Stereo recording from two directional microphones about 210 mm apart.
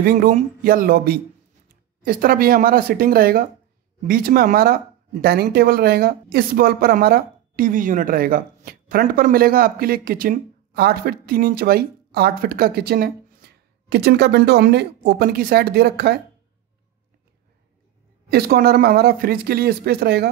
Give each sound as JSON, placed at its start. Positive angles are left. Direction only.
{"t": 0.0, "sound": "a woman's voice", "side_deg": -40}
{"t": 18.3, "sound": "a woman's voice", "side_deg": -50}